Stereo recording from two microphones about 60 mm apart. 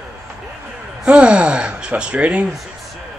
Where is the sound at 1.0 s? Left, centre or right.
Centre.